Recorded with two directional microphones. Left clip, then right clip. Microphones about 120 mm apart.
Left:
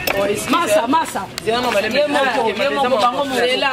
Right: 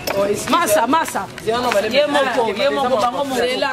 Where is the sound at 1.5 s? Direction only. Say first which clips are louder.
Even; centre (ahead or behind).